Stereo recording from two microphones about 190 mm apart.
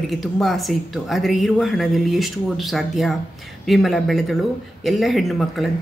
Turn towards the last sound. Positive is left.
turn(degrees=0)  # may be behind; listen again after turning